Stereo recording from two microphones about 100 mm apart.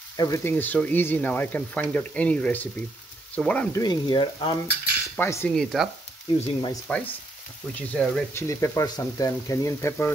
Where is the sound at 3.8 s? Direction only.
50° left (ahead or behind).